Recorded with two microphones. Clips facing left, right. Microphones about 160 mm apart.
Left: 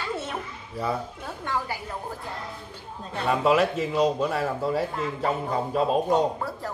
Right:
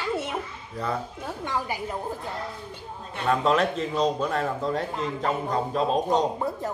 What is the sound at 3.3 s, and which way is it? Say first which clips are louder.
A man's voice: left 1 dB; 10° left (ahead or behind).